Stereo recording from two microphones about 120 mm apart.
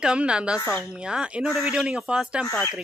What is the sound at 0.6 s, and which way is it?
Speech, 20° left (ahead or behind).